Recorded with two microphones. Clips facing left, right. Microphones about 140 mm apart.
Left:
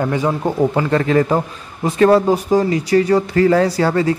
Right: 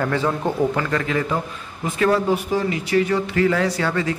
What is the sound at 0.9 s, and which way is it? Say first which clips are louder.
Speech: left 7 dB; 40° left (ahead or behind).